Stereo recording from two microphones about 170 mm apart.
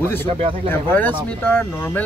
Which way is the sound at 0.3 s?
35° right (ahead or behind).